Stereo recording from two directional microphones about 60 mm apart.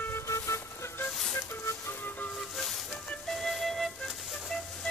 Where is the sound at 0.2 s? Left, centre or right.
Left.